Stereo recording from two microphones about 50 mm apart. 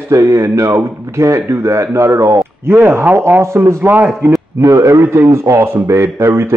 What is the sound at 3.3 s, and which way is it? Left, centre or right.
Speech, right.